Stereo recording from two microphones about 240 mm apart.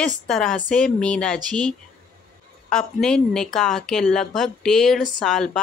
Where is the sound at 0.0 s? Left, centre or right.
Centre.